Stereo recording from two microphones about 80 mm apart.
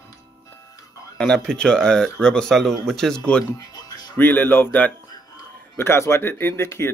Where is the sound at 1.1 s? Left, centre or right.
Centre.